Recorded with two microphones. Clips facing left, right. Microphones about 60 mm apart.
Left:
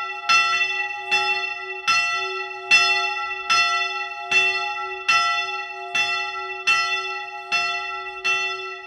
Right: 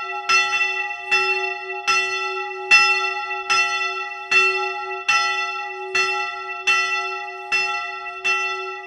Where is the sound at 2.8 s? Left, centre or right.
Right.